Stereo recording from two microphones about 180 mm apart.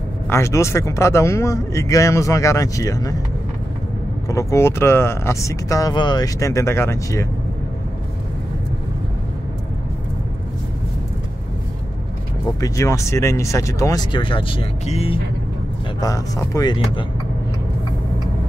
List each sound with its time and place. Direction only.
0.3 s speech: 15° left (ahead or behind)
4.3 s speech: 15° left (ahead or behind)
12.5 s speech: 20° left (ahead or behind); by 15.1 s 35° left (ahead or behind)
16.0 s speech: 20° left (ahead or behind)